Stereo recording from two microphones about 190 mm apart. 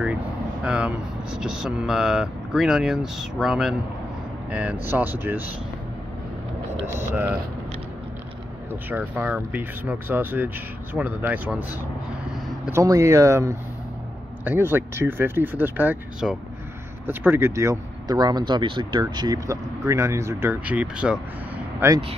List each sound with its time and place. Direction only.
0.7 s speech: 5° right (ahead or behind)
6.9 s speech: 10° right (ahead or behind)
8.8 s speech: 10° right (ahead or behind)
12.8 s speech: 15° right (ahead or behind)
21.7 s speech: 15° right (ahead or behind)